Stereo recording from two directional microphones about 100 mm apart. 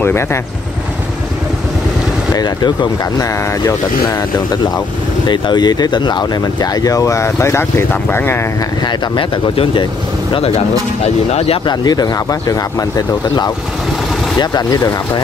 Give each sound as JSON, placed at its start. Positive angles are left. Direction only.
{"t": 0.0, "sound": "speech", "side_deg": 25}
{"t": 2.3, "sound": "speech", "side_deg": 45}
{"t": 5.3, "sound": "speech", "side_deg": 45}
{"t": 8.8, "sound": "speech", "side_deg": 55}
{"t": 10.3, "sound": "speech", "side_deg": 90}
{"t": 11.6, "sound": "speech", "side_deg": 45}